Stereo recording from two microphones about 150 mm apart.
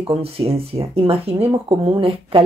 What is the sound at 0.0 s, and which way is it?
A woman's voice, 40° right (ahead or behind).